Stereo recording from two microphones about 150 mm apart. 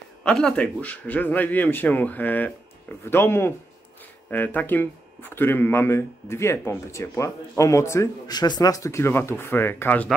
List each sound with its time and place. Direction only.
0.2 s speech: 5° left (ahead or behind)